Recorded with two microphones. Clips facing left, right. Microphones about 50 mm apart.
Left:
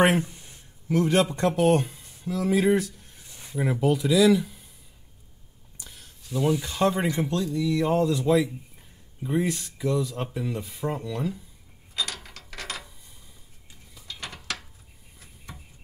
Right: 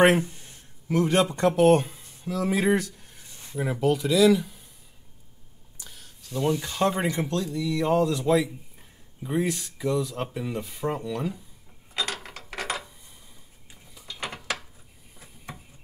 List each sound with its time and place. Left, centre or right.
0.8 s speech: centre
3.4 s a sound: centre
3.8 s speech: centre
5.8 s a sound: centre
7.0 s speech: centre
11.9 s mechanisms: right
13.9 s gears: centre
14.2 s gears: right